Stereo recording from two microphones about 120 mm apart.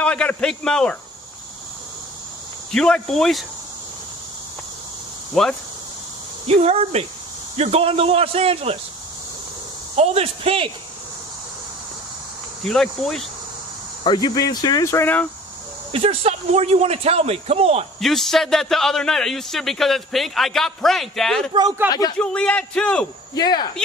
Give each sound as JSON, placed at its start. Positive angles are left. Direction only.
{"t": 0.0, "sound": "a man's voice", "side_deg": 10}
{"t": 2.7, "sound": "a man's voice", "side_deg": 5}
{"t": 5.3, "sound": "a man's voice", "side_deg": 5}
{"t": 6.4, "sound": "a man's voice", "side_deg": -55}
{"t": 9.9, "sound": "a man's voice", "side_deg": -60}
{"t": 12.6, "sound": "a man's voice", "side_deg": 5}
{"t": 14.0, "sound": "speech", "side_deg": 35}
{"t": 15.9, "sound": "a man's voice", "side_deg": -55}
{"t": 18.0, "sound": "a man's voice", "side_deg": 0}
{"t": 21.8, "sound": "speech", "side_deg": -10}
{"t": 22.2, "sound": "a man's voice", "side_deg": 10}
{"t": 23.3, "sound": "speech", "side_deg": 35}